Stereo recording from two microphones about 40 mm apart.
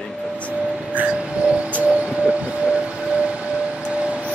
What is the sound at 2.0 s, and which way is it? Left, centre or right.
Siren, right.